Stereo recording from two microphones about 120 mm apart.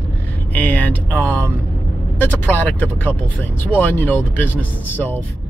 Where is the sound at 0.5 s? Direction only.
15° left (ahead or behind).